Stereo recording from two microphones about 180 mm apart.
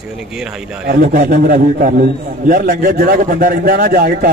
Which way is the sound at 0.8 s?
45° right (ahead or behind).